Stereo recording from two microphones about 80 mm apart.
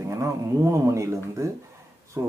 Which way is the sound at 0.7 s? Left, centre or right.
Right.